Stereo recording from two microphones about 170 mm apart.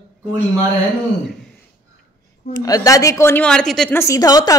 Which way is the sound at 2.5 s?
20° left (ahead or behind).